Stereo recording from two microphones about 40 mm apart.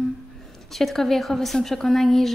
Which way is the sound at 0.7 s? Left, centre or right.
Centre.